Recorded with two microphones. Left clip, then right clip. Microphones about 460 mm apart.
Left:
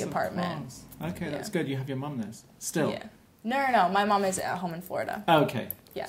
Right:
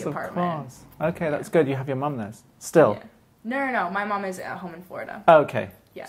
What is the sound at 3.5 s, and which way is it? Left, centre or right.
A woman's voice, left.